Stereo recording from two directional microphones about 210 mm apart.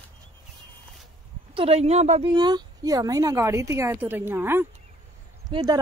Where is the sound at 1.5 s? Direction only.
25° right (ahead or behind).